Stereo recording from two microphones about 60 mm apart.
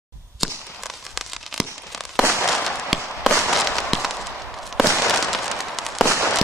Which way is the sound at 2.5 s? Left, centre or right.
Centre.